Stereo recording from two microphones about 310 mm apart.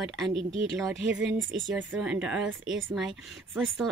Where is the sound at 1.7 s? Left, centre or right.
Centre.